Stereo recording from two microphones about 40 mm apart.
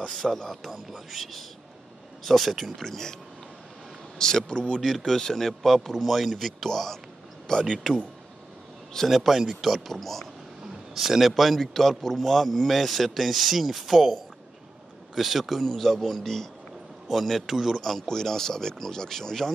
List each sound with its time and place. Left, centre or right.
0.0 s a man's voice: centre
0.7 s speech: centre
2.2 s speech: centre
2.6 s a man's voice: centre
4.2 s speech: centre
4.8 s a man's voice: centre
9.1 s speech: centre
11.0 s speech: centre
15.1 s speech: centre
17.8 s a man's voice: centre